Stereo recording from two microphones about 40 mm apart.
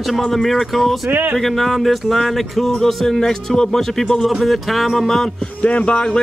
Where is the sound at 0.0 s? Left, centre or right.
Centre.